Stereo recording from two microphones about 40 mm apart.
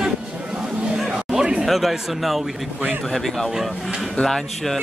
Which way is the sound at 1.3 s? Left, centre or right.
Centre.